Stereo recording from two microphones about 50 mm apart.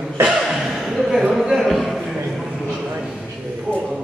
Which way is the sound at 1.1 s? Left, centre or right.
Centre.